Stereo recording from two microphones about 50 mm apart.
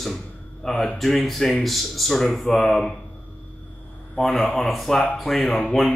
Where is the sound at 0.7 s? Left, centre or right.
Centre.